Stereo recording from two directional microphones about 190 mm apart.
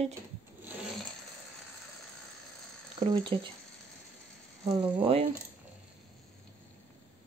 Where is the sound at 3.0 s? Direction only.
25° right (ahead or behind).